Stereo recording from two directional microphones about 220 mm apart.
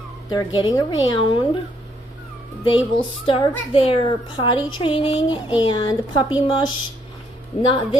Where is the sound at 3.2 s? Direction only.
25° left (ahead or behind).